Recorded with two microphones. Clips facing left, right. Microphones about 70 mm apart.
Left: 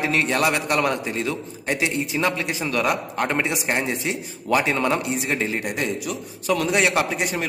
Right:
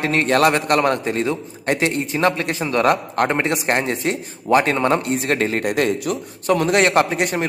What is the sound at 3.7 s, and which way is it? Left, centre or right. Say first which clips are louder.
Speech: right 4 dB; centre.